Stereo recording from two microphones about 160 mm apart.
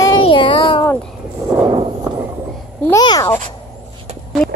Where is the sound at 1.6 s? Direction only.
25° right (ahead or behind).